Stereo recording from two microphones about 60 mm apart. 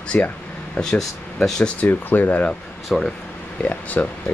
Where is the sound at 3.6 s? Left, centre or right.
Left.